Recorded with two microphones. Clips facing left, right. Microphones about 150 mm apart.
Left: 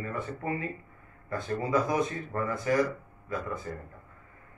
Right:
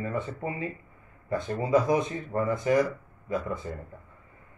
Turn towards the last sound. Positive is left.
turn(degrees=-20)  # may be behind; listen again after turning